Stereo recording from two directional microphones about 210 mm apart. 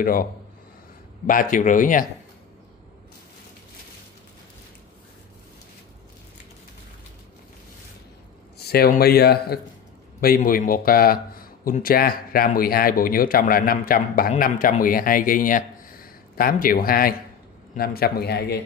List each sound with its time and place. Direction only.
0.0 s a man's voice: 45° left (ahead or behind)
8.5 s a man's voice: 50° left (ahead or behind)